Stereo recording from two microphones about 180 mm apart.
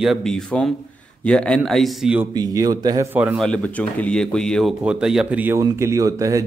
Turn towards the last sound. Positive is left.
turn(degrees=-20)  # may be behind; listen again after turning